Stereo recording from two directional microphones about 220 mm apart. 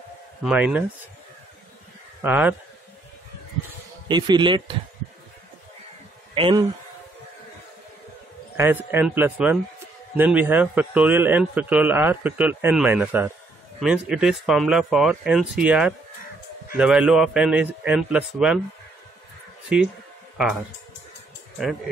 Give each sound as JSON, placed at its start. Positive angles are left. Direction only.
{"t": 0.4, "sound": "a man's voice", "side_deg": -5}
{"t": 2.2, "sound": "a man's voice", "side_deg": -10}
{"t": 4.1, "sound": "a man's voice", "side_deg": -20}
{"t": 6.3, "sound": "a man's voice", "side_deg": -20}
{"t": 8.5, "sound": "a man's voice", "side_deg": -10}